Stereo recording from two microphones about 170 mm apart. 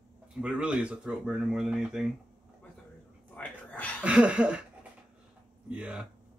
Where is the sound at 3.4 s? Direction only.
10° left (ahead or behind).